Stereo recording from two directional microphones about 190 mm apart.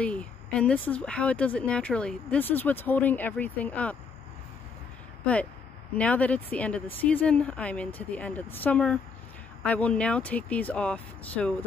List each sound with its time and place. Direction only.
0.0 s speech: 5° left (ahead or behind)
5.2 s speech: 5° left (ahead or behind)